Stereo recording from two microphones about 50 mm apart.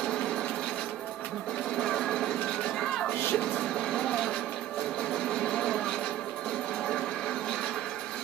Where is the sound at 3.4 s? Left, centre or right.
Centre.